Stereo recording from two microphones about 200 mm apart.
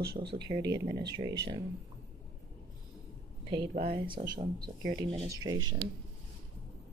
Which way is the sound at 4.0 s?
25° right (ahead or behind).